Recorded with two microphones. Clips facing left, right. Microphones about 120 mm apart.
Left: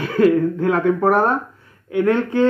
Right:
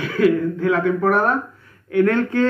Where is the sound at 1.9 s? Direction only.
20° left (ahead or behind).